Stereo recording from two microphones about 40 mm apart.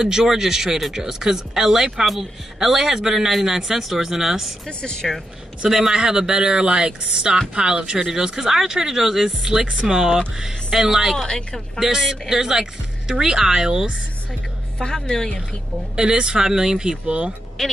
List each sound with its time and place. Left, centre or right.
0.0 s speech: centre
5.0 s speech: centre
5.7 s speech: centre
11.1 s a woman's voice: centre
11.8 s speech: centre
15.0 s a woman's voice: centre
16.0 s speech: right
17.6 s a woman's voice: centre